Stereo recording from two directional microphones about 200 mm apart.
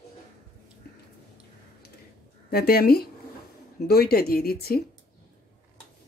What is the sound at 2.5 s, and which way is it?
Speech, 50° left (ahead or behind).